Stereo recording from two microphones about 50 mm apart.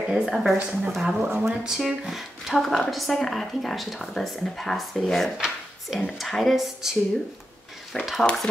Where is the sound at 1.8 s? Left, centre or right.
Centre.